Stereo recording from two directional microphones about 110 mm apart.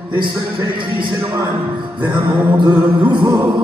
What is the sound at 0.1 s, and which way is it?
A man's voice, 45° right (ahead or behind).